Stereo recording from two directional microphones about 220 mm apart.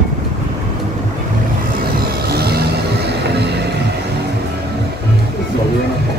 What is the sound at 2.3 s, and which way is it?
Music, 45° right (ahead or behind).